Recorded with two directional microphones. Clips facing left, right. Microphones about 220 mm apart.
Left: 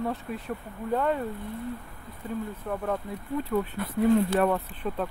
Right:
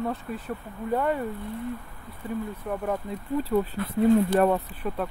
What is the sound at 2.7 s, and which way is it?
Speech, 10° right (ahead or behind).